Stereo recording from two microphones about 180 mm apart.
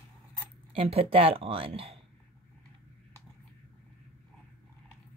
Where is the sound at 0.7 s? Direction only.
35° right (ahead or behind).